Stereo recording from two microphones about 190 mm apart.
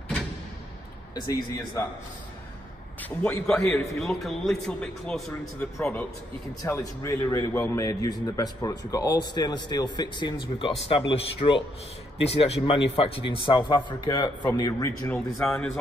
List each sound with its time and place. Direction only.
1.5 s speech: 15° left (ahead or behind)
3.0 s a man's voice: 5° left (ahead or behind)
15.4 s a man's voice: centre (ahead or behind)